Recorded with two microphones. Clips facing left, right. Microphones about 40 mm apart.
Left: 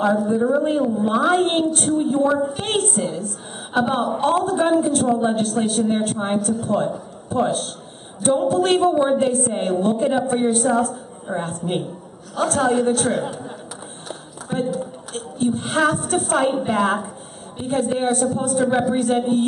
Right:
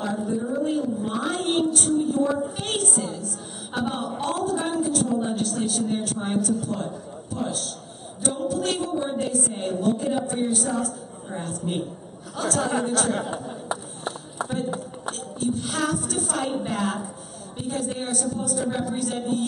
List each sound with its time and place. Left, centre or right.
0.6 s a woman's voice: left
13.7 s a sound: right
15.1 s a woman's voice: left